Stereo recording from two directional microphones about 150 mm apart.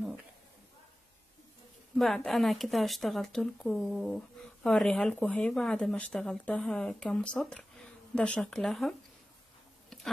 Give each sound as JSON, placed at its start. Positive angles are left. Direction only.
{"t": 2.0, "sound": "speech", "side_deg": 0}